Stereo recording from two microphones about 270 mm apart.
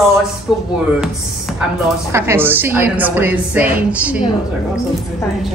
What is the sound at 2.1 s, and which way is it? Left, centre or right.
A woman's voice, centre.